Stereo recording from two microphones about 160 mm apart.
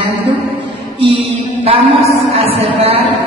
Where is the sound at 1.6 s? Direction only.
35° right (ahead or behind).